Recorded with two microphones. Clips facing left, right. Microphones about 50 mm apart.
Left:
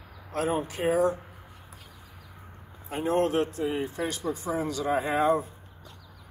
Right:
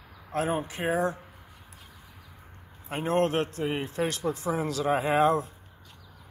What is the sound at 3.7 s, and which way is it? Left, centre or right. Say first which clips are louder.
Speech: right 1 dB; right.